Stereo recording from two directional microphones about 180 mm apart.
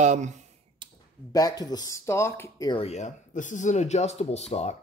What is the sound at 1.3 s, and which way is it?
Speech, 20° left (ahead or behind).